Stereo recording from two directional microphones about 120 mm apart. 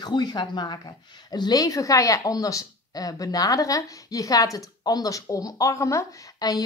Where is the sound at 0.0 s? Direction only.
35° left (ahead or behind).